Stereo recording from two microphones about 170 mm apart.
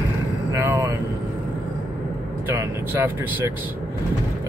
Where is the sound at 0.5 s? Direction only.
15° right (ahead or behind).